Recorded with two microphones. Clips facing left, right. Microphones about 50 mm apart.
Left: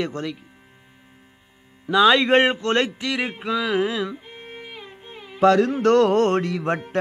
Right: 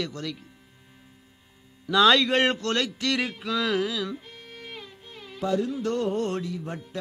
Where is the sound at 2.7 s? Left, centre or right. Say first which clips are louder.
Left 6 dB; left.